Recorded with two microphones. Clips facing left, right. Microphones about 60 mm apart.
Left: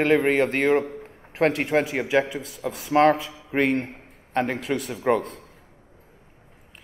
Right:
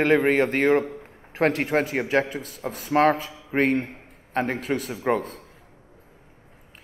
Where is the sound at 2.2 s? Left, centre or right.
Right.